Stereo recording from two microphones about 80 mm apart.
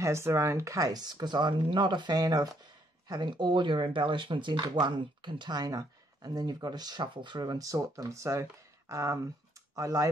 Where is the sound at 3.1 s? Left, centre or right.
Right.